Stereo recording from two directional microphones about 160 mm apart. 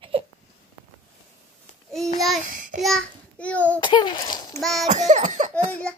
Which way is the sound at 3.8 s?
30° left (ahead or behind).